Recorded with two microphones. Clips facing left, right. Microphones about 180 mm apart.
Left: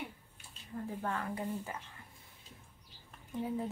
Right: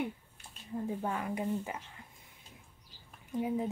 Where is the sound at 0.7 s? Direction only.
15° right (ahead or behind).